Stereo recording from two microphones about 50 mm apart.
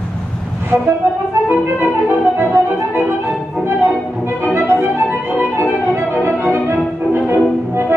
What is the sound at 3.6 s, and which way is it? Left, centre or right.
Music, right.